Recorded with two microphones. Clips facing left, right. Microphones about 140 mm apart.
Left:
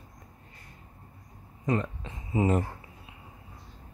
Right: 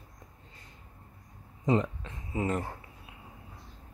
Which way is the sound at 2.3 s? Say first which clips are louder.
Left 5 dB; 15° left (ahead or behind).